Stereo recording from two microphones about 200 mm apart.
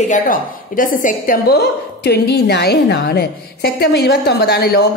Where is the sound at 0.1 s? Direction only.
45° left (ahead or behind).